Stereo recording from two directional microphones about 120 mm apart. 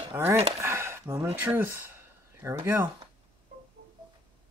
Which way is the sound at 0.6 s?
20° right (ahead or behind).